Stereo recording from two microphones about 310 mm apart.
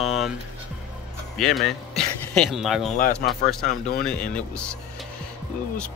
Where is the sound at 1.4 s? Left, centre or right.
Centre.